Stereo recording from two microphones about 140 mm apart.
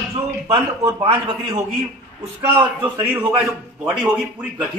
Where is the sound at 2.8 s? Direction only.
10° right (ahead or behind).